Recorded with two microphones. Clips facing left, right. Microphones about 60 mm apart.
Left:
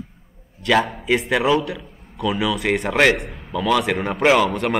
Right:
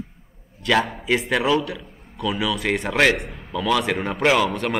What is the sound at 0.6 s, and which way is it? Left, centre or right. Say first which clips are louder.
A man's voice: left 2 dB; centre.